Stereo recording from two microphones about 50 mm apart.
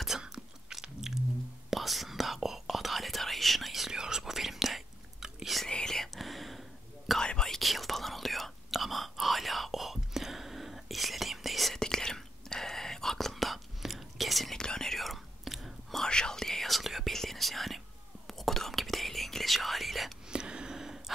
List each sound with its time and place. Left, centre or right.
0.2 s chewing: centre
1.7 s whispering: centre
5.7 s whispering: centre
6.1 s whispering: centre
7.2 s whispering: centre
11.8 s whispering: centre
14.6 s whispering: centre
16.0 s whispering: centre
20.2 s a sound: centre